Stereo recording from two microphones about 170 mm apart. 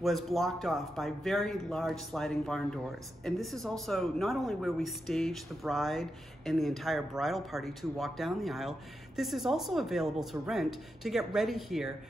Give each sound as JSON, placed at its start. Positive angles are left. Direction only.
{"t": 0.0, "sound": "speech", "side_deg": 0}